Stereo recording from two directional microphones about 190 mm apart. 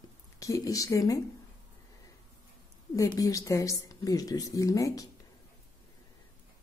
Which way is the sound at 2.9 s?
20° left (ahead or behind).